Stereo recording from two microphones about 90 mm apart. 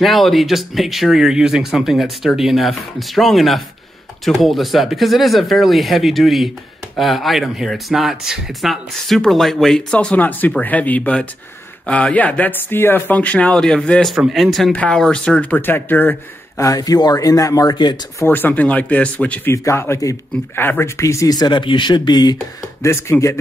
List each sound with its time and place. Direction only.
0.0 s speech: centre (ahead or behind)
14.0 s speech: centre (ahead or behind)
14.7 s speech: 10° left (ahead or behind)
15.6 s speech: 20° left (ahead or behind)
16.5 s speech: 40° left (ahead or behind)
18.2 s speech: 20° left (ahead or behind)
19.5 s speech: 30° left (ahead or behind)
20.5 s speech: 25° left (ahead or behind); by 22.4 s 50° left (ahead or behind)
22.8 s speech: 30° left (ahead or behind)